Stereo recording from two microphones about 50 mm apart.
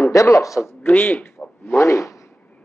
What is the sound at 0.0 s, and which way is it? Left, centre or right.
Speech, left.